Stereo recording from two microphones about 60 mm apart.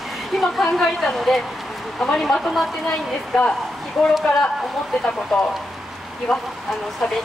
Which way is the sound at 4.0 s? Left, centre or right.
Centre.